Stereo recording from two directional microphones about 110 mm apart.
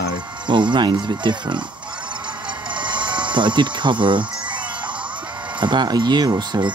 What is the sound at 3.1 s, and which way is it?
Speech, 45° right (ahead or behind).